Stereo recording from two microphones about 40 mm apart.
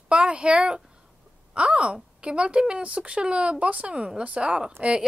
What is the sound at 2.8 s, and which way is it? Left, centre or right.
A woman's voice, right.